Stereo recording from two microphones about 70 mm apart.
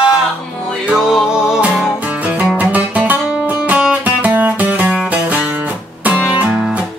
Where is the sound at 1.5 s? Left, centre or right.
Centre.